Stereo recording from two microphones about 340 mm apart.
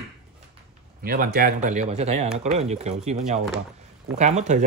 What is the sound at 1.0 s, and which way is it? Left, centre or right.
Speech, right.